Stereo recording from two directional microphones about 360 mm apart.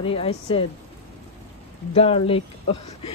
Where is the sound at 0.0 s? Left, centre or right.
Centre.